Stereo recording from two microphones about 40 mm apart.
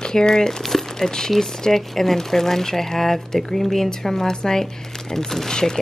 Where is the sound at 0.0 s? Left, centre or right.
Centre.